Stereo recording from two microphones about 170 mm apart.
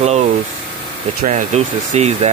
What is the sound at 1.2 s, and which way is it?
Speech, 40° right (ahead or behind).